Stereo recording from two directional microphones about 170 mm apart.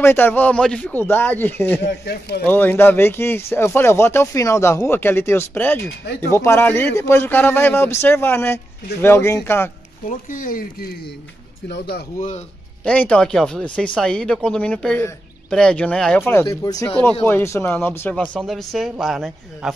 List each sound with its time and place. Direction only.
0.0 s speech: 10° left (ahead or behind)
1.8 s speech: 75° left (ahead or behind)
2.4 s speech: 10° left (ahead or behind)
10.0 s speech: 50° left (ahead or behind)
11.7 s speech: 75° left (ahead or behind)
12.8 s speech: 5° left (ahead or behind)
16.4 s speech: 20° left (ahead or behind); by 19.7 s centre (ahead or behind)